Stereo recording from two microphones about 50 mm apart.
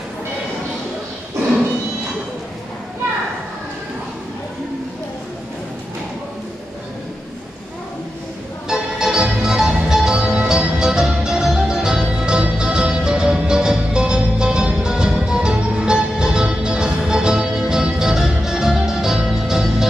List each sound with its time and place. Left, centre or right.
8.6 s music: centre